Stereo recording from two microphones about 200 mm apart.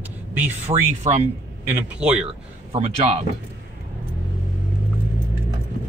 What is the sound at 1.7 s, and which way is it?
Speech, 5° right (ahead or behind).